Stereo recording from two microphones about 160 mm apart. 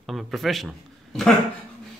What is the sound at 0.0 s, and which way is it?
Speech, centre (ahead or behind).